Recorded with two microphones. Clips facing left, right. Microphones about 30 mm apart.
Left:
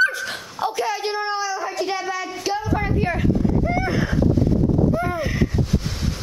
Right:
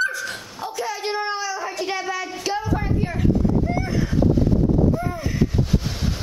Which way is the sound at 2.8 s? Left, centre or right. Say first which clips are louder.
Left 2 dB; left.